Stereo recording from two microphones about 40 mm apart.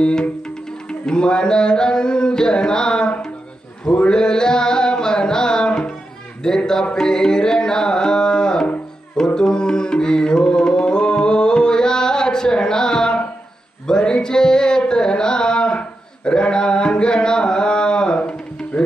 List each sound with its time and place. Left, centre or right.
0.0 s music: left
6.4 s carnatic music: centre
9.1 s music: centre